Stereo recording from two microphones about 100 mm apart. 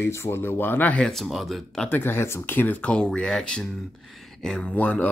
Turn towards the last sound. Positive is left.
turn(degrees=15)  # may be behind; listen again after turning